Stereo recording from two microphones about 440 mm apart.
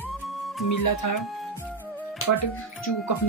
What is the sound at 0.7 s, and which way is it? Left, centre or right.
Speech, left.